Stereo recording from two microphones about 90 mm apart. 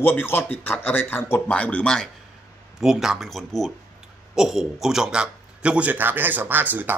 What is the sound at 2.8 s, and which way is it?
Speech, 5° right (ahead or behind).